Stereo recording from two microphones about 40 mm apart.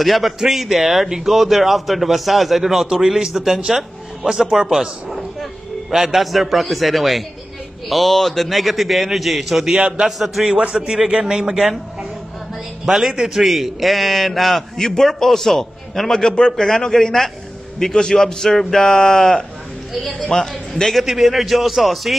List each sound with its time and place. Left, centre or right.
0.0 s speech: centre
9.8 s a man's voice: right
10.0 s speech: centre
10.6 s a man's voice: right
12.8 s speech: centre
16.2 s a man's voice: left
21.0 s speech: centre